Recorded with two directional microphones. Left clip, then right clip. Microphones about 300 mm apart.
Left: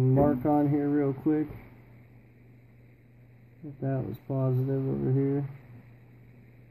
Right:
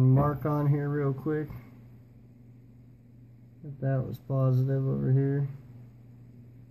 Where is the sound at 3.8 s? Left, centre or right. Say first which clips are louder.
Even; centre.